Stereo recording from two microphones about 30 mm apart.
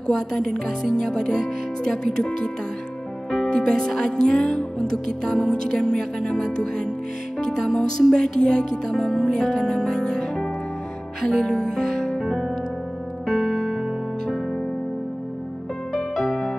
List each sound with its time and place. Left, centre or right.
0.1 s speech: centre
3.5 s speech: left
7.5 s speech: centre
8.2 s speech: left
8.9 s speech: centre
11.4 s music: left
15.9 s music: centre